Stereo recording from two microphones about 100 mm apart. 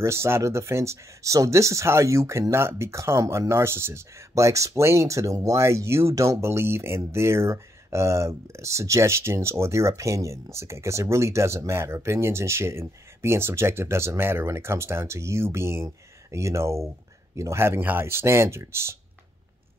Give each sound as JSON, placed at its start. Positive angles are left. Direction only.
{"t": 0.0, "sound": "speech", "side_deg": -25}